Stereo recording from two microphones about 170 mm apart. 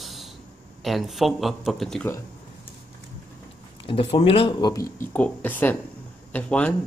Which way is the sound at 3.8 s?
35° left (ahead or behind).